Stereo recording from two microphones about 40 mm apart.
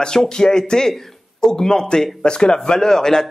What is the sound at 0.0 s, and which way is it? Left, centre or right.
Speech, centre.